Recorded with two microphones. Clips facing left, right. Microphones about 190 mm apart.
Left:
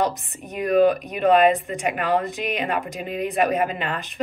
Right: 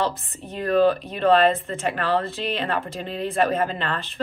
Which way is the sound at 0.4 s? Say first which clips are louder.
Left 2 dB; 15° left (ahead or behind).